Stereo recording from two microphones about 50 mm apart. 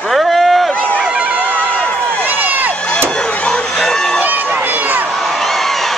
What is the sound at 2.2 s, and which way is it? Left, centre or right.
Crowd, right.